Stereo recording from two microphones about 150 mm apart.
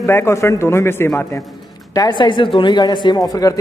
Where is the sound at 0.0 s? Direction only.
20° left (ahead or behind).